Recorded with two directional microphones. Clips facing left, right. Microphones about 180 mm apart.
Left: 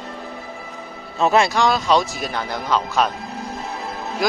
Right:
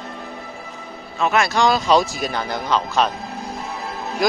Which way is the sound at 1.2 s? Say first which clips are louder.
Left 3 dB; 35° left (ahead or behind).